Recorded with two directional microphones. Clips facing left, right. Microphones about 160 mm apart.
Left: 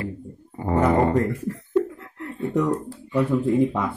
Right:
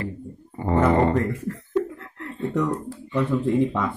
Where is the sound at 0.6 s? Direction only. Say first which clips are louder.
Even; 10° left (ahead or behind).